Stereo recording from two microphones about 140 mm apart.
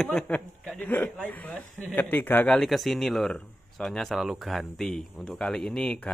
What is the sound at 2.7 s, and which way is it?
Speech, centre (ahead or behind).